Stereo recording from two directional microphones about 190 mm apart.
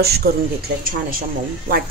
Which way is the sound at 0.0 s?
55° right (ahead or behind).